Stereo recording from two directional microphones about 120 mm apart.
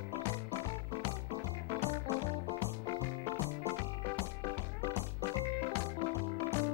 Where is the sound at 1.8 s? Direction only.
15° left (ahead or behind).